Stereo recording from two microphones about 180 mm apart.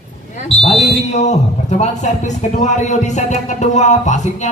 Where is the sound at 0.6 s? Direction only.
35° left (ahead or behind).